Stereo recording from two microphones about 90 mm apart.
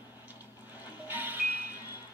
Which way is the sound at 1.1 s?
20° right (ahead or behind).